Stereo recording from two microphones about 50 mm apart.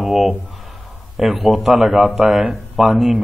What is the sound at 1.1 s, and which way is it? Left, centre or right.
A man's voice, centre.